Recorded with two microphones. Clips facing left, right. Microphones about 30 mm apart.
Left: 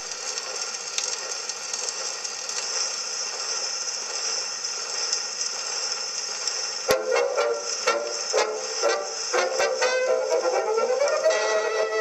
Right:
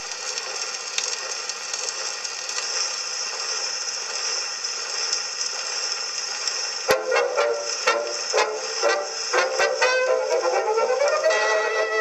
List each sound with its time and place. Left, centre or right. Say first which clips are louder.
6.9 s music: right 1 dB; centre